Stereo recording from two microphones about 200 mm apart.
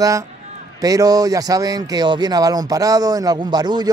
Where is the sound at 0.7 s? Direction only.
20° right (ahead or behind).